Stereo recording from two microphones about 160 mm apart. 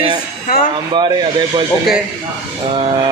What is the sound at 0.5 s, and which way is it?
Speech, 65° left (ahead or behind).